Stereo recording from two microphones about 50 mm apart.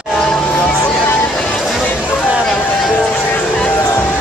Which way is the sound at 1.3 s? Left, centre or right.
Centre.